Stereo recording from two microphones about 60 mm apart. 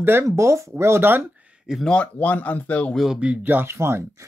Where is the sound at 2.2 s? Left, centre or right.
Left.